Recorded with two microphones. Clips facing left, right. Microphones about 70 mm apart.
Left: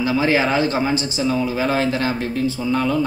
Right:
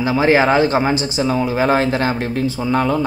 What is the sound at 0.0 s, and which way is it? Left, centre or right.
Speech, right.